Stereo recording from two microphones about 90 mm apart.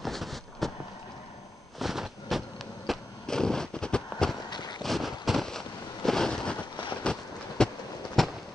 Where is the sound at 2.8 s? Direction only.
5° left (ahead or behind).